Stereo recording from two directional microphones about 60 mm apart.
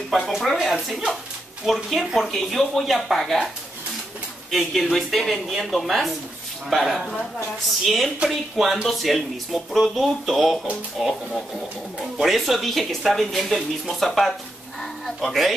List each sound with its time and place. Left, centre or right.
0.3 s speech: centre
4.5 s speech: centre